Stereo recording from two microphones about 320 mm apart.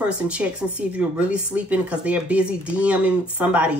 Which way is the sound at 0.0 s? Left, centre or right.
Centre.